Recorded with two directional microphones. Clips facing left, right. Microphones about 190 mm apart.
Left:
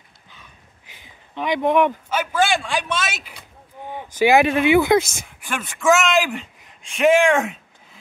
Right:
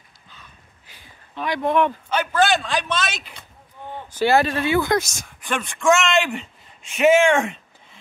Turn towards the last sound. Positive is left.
turn(degrees=0)  # may be behind; listen again after turning